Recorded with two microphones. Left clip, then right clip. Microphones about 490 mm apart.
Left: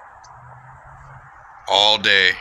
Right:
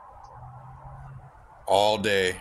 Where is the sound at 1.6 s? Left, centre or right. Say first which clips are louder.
Left 6 dB; right.